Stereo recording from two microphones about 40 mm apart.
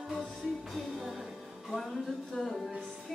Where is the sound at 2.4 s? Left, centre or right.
Centre.